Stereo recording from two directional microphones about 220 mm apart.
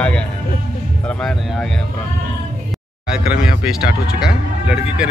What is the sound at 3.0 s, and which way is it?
Speech, 5° right (ahead or behind).